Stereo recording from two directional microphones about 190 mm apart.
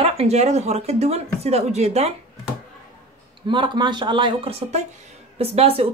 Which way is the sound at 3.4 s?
25° right (ahead or behind).